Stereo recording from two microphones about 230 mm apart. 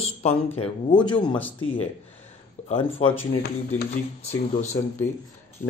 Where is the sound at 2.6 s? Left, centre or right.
Left.